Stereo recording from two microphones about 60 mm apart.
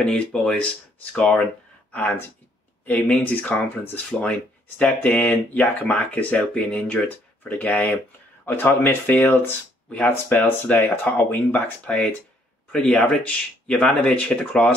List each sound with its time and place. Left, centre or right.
0.0 s speech: centre
13.7 s speech: centre
14.5 s speech: left